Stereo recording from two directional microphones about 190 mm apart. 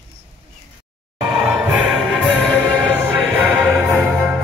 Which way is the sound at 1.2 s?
5° right (ahead or behind).